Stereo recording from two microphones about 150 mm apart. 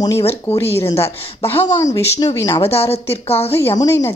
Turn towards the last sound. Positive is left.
turn(degrees=20)  # may be behind; listen again after turning